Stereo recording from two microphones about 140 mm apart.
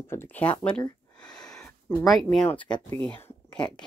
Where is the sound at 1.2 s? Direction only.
5° left (ahead or behind).